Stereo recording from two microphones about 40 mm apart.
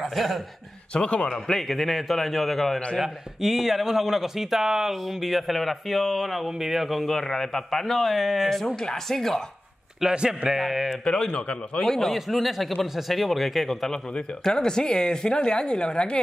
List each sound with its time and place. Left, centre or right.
0.0 s a man's voice: centre
0.9 s a woman's voice: left
1.3 s speech: centre
3.0 s speech: centre
8.6 s speech: left
10.0 s a man's voice: centre
10.9 s a woman's voice: centre
11.8 s speech: centre
14.4 s a woman's voice: centre